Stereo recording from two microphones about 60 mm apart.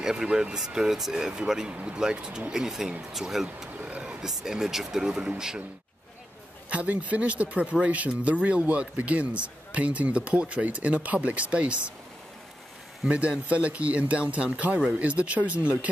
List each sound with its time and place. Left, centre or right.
0.0 s speech: centre
6.7 s speech: right
13.1 s speech: right